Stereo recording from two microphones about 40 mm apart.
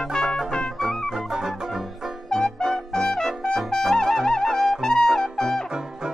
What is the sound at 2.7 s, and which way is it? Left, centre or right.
Brass instrument, centre.